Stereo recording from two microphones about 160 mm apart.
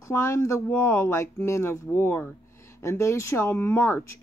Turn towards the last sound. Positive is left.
turn(degrees=15)  # may be behind; listen again after turning